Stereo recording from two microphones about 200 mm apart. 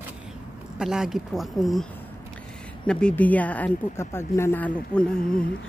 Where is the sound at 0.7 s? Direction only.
5° right (ahead or behind).